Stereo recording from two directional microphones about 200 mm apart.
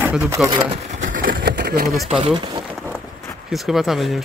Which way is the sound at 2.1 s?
25° right (ahead or behind).